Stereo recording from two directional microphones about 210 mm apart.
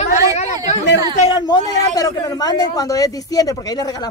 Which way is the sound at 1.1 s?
25° left (ahead or behind).